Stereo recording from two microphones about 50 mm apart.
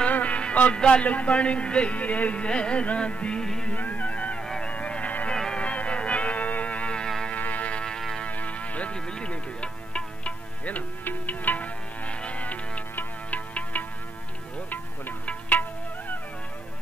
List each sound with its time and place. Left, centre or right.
0.0 s music: left
0.7 s speech: centre
3.4 s music: centre
3.7 s music: left
4.4 s music: centre
5.3 s music: centre
5.6 s music: left
8.9 s music: centre